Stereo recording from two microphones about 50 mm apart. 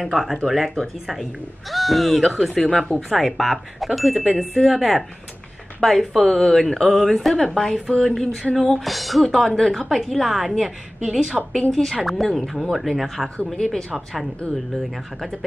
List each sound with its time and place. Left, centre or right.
0.0 s speech: centre
2.5 s speech: centre
3.1 s speech: centre
11.7 s speech: centre
13.5 s speech: centre